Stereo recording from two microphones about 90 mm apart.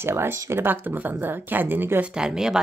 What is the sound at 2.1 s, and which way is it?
Speech, 10° right (ahead or behind).